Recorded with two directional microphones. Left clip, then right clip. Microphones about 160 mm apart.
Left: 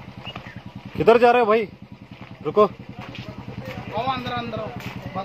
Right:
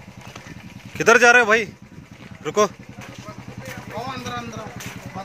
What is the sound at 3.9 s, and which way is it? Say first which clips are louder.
Speech: left 5 dB; 15° left (ahead or behind).